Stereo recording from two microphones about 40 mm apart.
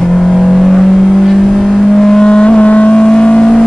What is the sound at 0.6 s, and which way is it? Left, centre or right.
Vehicle, centre.